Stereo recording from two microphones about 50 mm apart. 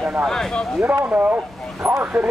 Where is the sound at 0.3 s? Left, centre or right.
Centre.